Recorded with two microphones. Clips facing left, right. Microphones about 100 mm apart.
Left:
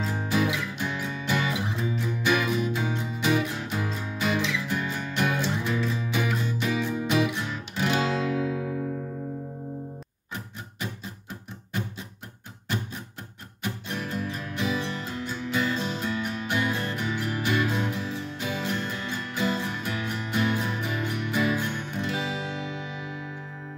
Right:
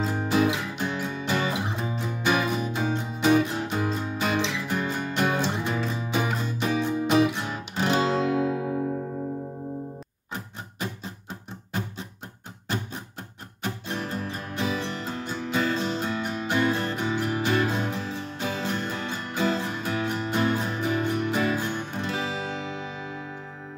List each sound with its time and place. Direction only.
0.0 s music: 40° right (ahead or behind)
13.6 s music: 35° right (ahead or behind)